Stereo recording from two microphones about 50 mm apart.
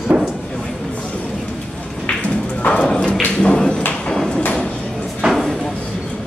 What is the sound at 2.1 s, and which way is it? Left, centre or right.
Thump, left.